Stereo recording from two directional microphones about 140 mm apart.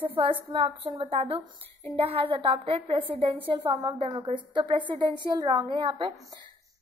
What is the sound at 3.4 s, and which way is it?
A woman's voice, 35° right (ahead or behind).